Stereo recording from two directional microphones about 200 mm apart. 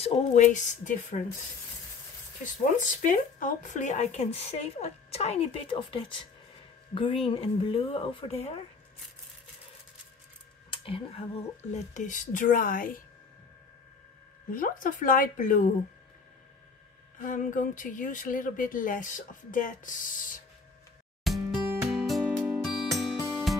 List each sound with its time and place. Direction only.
0.0 s speech: 35° left (ahead or behind)
2.4 s speech: 40° left (ahead or behind)
10.7 s speech: 25° left (ahead or behind); by 13.0 s 45° left (ahead or behind)
14.5 s a woman's voice: 45° left (ahead or behind)
17.3 s speech: 40° left (ahead or behind)
21.2 s music: centre (ahead or behind)